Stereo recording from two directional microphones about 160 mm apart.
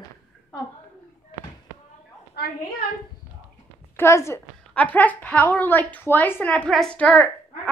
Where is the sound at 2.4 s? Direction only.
90° left.